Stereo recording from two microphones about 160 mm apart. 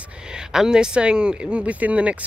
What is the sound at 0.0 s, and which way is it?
Speech, 5° right (ahead or behind).